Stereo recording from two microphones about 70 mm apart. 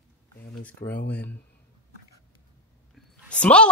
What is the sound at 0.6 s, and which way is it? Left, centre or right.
Speech, left.